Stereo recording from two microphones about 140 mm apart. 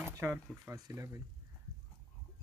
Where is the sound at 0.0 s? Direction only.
15° right (ahead or behind).